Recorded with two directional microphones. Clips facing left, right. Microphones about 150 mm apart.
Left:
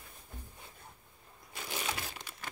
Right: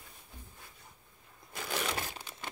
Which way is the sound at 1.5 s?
70° right (ahead or behind).